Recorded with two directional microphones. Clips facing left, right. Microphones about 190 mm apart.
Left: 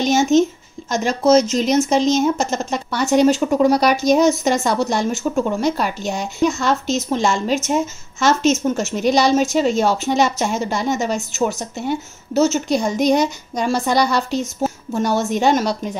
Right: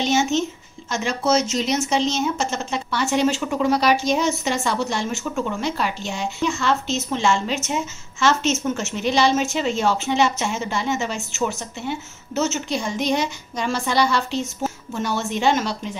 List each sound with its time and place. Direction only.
0.0 s a woman's voice: 40° left (ahead or behind)